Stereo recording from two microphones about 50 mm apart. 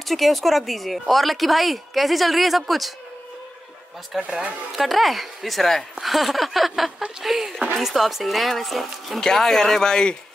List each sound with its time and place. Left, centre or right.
0.0 s speech: centre
4.2 s speech: right
4.7 s speech: centre